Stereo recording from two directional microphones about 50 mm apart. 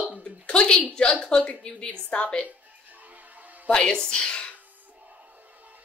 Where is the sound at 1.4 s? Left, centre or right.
Left.